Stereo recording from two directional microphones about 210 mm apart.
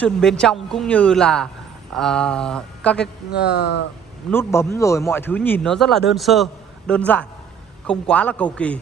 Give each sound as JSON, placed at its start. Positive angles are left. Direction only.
{"t": 0.0, "sound": "a man's voice", "side_deg": 5}
{"t": 3.3, "sound": "speech", "side_deg": 55}
{"t": 4.3, "sound": "a man's voice", "side_deg": 10}